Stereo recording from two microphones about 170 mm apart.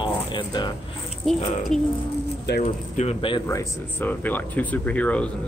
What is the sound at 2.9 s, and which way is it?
Speech, 35° left (ahead or behind).